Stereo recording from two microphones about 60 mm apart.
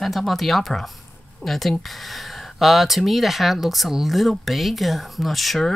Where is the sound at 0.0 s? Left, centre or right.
Centre.